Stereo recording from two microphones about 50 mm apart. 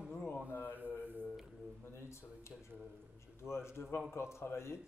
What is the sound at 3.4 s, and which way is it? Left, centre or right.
A man's voice, left.